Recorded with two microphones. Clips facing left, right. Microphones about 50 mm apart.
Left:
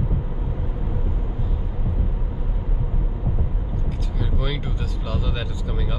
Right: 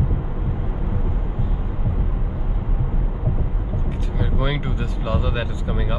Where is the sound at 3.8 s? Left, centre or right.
Centre.